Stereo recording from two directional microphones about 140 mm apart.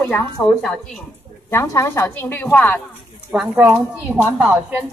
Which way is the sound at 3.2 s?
10° right (ahead or behind).